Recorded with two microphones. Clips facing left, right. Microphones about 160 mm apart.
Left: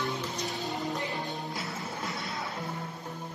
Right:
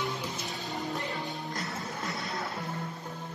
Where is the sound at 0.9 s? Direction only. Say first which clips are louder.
Left 1 dB; 20° left (ahead or behind).